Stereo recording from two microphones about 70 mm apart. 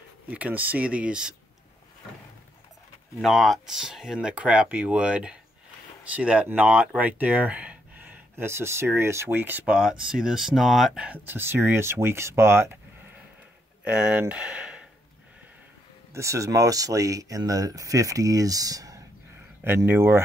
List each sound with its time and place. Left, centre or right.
0.3 s speech: right
3.2 s speech: centre; by 8.5 s right
8.5 s speech: right
9.7 s speech: centre
11.2 s speech: right
13.8 s speech: centre
16.1 s speech: right
19.6 s speech: right